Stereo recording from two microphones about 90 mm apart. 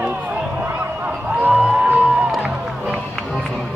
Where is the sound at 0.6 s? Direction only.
20° right (ahead or behind).